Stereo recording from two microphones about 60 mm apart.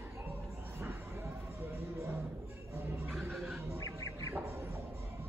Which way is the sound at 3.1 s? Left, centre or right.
Centre.